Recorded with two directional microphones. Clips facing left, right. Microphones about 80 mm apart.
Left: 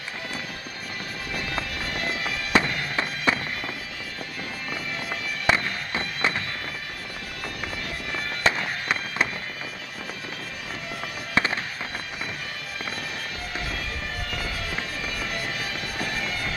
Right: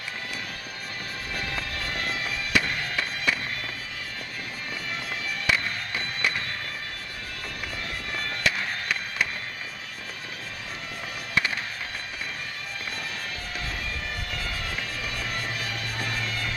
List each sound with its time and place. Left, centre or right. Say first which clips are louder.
2.5 s fireworks: left 4 dB; left
5.5 s music: left 4 dB; left
8.5 s music: left 4 dB; left
11.3 s fireworks: left 3 dB; left